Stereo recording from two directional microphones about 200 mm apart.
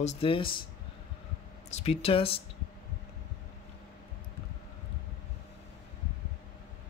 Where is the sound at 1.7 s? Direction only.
30° left (ahead or behind).